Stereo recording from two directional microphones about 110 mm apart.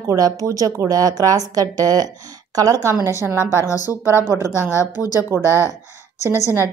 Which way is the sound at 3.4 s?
25° left (ahead or behind).